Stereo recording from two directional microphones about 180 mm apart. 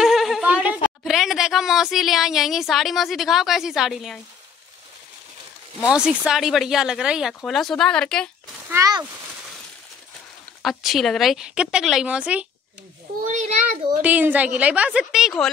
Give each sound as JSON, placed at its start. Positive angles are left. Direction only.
{"t": 0.0, "sound": "a sound", "side_deg": 0}
{"t": 1.0, "sound": "speech", "side_deg": 0}
{"t": 5.9, "sound": "speech", "side_deg": -5}
{"t": 8.6, "sound": "speech", "side_deg": -20}
{"t": 10.6, "sound": "speech", "side_deg": 0}
{"t": 13.2, "sound": "a child's voice", "side_deg": -45}
{"t": 14.0, "sound": "a woman's voice", "side_deg": -10}